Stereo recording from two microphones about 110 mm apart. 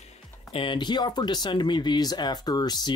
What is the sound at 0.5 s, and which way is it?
Speech, 50° left (ahead or behind).